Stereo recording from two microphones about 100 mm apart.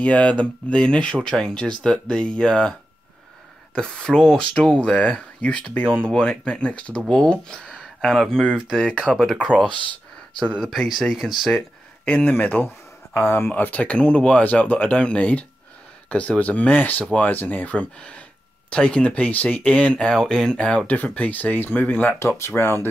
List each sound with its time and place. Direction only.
0.0 s speech: 15° left (ahead or behind)
3.7 s speech: 10° left (ahead or behind)
8.5 s speech: 5° right (ahead or behind)
8.7 s speech: 10° left (ahead or behind)
12.0 s speech: 15° left (ahead or behind)